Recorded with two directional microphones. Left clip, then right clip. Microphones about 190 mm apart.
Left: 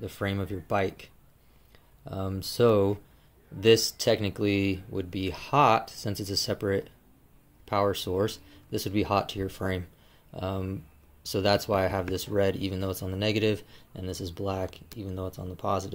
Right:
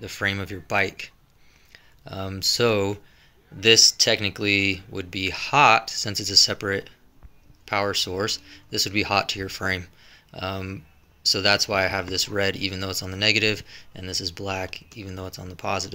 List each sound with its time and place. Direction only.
0.0 s speech: 10° left (ahead or behind)
15.1 s speech: 20° right (ahead or behind)
15.4 s speech: 15° left (ahead or behind)